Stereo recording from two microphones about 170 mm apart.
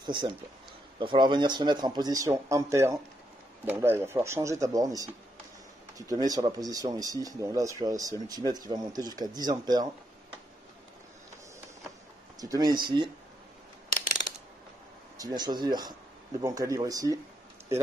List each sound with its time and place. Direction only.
0.0 s speech: 25° right (ahead or behind)
12.4 s speech: 20° right (ahead or behind)
15.1 s speech: 25° right (ahead or behind)